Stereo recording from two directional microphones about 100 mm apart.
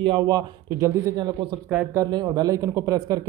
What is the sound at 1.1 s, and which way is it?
A man's voice, 45° right (ahead or behind).